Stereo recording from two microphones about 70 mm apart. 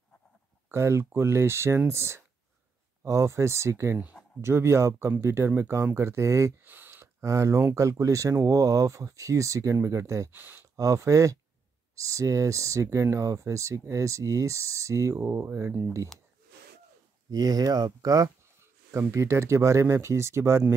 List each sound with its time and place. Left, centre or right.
0.7 s speech: right
6.6 s a sound: right
7.2 s speech: right
10.3 s speech: right
10.8 s speech: right
17.3 s speech: right
18.9 s speech: right